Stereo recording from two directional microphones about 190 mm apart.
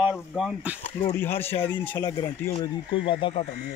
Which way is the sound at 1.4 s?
30° left (ahead or behind).